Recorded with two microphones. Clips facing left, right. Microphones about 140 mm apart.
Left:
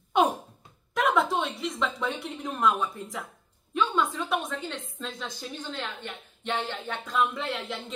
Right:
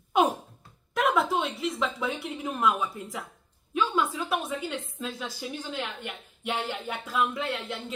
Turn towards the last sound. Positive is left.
turn(degrees=0)  # may be behind; listen again after turning